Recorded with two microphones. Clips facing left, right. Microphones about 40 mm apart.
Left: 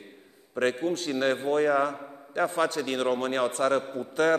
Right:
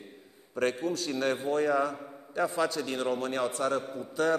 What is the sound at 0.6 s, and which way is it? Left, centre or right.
A man's voice, left.